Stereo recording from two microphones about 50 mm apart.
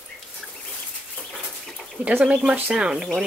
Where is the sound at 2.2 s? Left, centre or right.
Centre.